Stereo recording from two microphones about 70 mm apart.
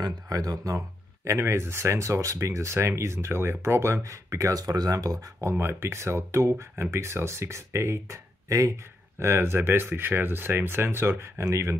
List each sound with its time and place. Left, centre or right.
0.0 s speech: right
5.5 s speech: right
9.2 s speech: right